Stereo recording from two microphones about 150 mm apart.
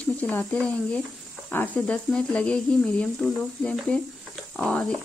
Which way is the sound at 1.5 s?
10° left (ahead or behind).